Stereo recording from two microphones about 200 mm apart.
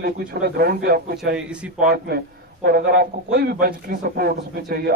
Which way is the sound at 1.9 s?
50° right (ahead or behind).